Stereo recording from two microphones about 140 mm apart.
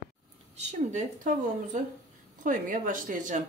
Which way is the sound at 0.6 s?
55° right (ahead or behind).